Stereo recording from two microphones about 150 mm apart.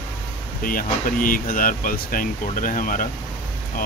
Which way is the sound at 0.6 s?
70° left (ahead or behind).